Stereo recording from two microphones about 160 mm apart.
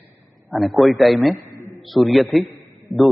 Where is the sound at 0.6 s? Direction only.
Centre (ahead or behind).